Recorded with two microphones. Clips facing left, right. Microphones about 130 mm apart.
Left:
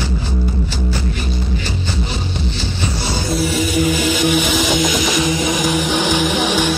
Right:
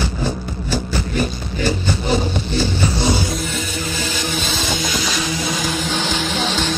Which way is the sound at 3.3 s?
10° left (ahead or behind).